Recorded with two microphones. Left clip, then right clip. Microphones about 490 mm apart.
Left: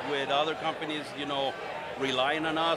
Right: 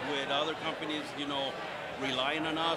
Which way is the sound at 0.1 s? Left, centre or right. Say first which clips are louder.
Left 5 dB; left.